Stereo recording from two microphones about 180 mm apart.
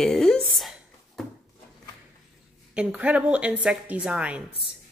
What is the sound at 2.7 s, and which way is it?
Speech, 5° right (ahead or behind).